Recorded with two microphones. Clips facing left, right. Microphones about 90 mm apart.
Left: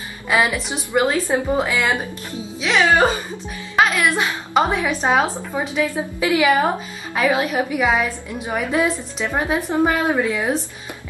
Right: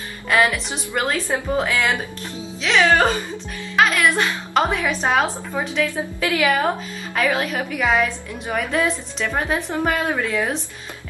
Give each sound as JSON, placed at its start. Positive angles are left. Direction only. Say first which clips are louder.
{"t": 0.3, "sound": "a woman's voice", "louder": "even", "side_deg": 5}
{"t": 4.2, "sound": "a woman's voice", "louder": "left 1 dB", "side_deg": 10}